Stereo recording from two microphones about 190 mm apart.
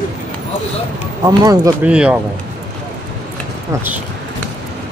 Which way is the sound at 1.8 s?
5° right (ahead or behind).